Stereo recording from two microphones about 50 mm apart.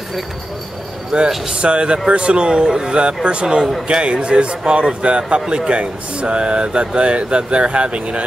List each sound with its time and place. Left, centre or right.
1.3 s speech: centre
1.6 s speech: right